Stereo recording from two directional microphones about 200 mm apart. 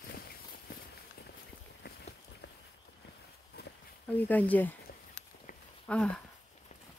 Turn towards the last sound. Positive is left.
turn(degrees=5)  # may be behind; listen again after turning